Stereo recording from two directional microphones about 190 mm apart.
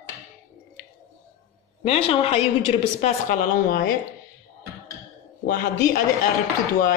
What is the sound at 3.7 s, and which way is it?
Speech, 50° left (ahead or behind).